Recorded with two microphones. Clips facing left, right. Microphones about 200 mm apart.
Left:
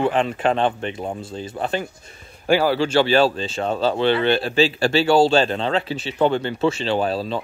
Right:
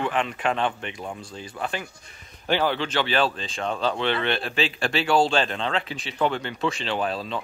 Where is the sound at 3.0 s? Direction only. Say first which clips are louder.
Left 9 dB; 30° left (ahead or behind).